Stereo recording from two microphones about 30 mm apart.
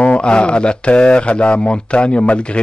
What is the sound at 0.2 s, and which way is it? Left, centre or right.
Speech, left.